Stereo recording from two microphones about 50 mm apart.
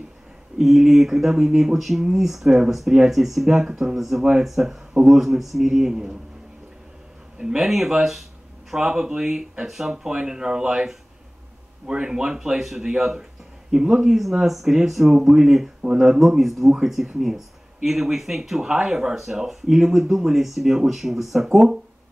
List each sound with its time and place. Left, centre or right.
0.6 s speech: centre
7.3 s speech: centre